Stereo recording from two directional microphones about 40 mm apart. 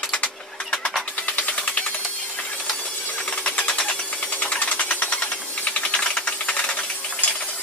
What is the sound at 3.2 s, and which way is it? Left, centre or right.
Sewing machine, left.